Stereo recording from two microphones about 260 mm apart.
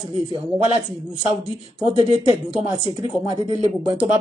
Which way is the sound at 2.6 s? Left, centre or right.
Centre.